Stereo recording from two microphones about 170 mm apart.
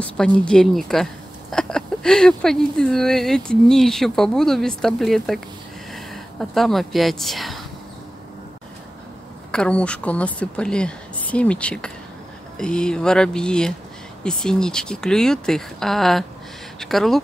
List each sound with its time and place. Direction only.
0.0 s speech: 5° left (ahead or behind)
6.5 s speech: centre (ahead or behind)
9.5 s a woman's voice: 5° left (ahead or behind)